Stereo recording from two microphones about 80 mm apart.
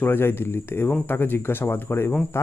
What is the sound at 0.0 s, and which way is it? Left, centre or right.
Speech, left.